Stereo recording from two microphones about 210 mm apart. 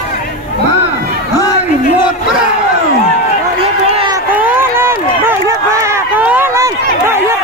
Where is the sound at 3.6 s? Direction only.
25° right (ahead or behind).